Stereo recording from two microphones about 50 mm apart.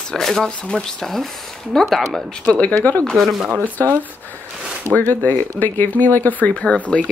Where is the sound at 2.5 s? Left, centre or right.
Left.